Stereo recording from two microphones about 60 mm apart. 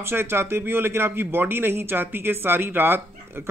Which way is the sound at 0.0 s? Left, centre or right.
Right.